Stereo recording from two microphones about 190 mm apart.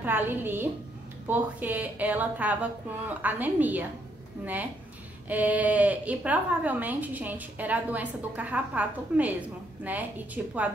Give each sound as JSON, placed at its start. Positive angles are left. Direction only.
{"t": 0.0, "sound": "speech", "side_deg": -10}
{"t": 5.3, "sound": "speech", "side_deg": -10}